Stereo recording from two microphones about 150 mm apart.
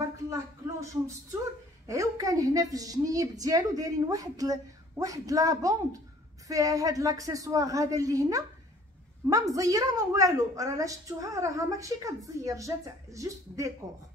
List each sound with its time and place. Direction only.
0.3 s a woman's voice: 20° right (ahead or behind)